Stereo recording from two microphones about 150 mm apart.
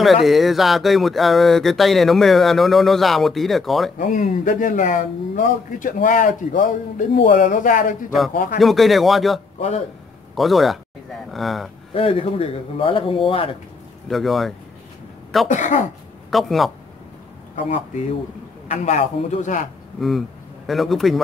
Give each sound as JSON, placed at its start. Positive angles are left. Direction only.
{"t": 0.0, "sound": "speech", "side_deg": 0}
{"t": 4.0, "sound": "speech", "side_deg": 60}
{"t": 8.5, "sound": "speech", "side_deg": 0}
{"t": 9.6, "sound": "speech", "side_deg": 45}
{"t": 10.3, "sound": "speech", "side_deg": 0}
{"t": 11.9, "sound": "speech", "side_deg": 40}
{"t": 14.0, "sound": "speech", "side_deg": 0}
{"t": 15.4, "sound": "speech", "side_deg": 55}
{"t": 16.3, "sound": "speech", "side_deg": 0}
{"t": 18.7, "sound": "a man's voice", "side_deg": 50}
{"t": 20.0, "sound": "speech", "side_deg": 0}